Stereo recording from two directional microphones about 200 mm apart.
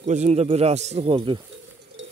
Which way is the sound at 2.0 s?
75° right (ahead or behind).